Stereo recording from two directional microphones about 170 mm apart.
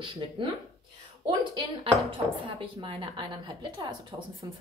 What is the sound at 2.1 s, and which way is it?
Speech, 35° right (ahead or behind).